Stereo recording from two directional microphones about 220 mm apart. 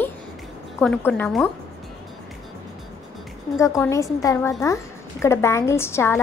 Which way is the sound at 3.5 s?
15° left (ahead or behind).